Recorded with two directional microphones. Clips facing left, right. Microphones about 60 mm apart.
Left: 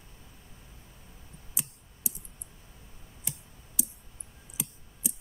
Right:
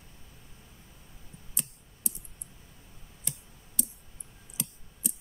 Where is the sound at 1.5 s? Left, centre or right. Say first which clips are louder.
Even; centre.